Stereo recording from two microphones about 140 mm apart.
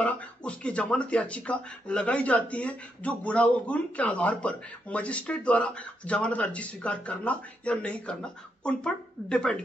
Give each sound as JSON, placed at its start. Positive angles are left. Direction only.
{"t": 0.0, "sound": "speech", "side_deg": 10}